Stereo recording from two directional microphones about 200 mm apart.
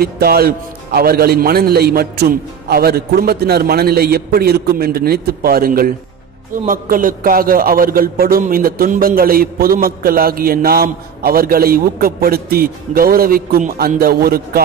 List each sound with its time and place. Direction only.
0.0 s a man's voice: 50° right (ahead or behind)